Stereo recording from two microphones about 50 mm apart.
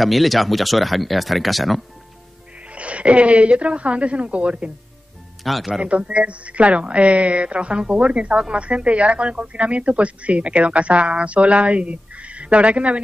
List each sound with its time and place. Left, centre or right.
0.0 s speech: centre
2.7 s speech: right
5.4 s speech: centre
5.7 s speech: right